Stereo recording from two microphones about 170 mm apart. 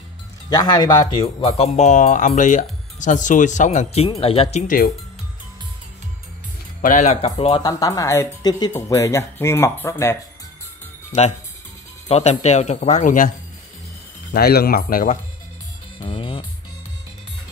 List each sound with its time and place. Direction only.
0.5 s speech: 25° left (ahead or behind)
1.2 s speech: 35° left (ahead or behind)
6.8 s speech: 45° left (ahead or behind); by 10.1 s 15° left (ahead or behind)
12.1 s speech: 40° left (ahead or behind)
14.3 s speech: 65° left (ahead or behind)
16.1 s music: 30° left (ahead or behind)